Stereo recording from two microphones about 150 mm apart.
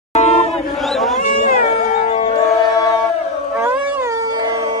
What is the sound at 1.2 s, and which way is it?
Cat, 55° left (ahead or behind).